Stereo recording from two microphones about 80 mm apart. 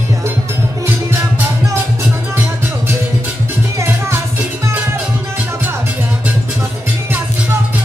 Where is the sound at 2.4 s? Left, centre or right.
Right.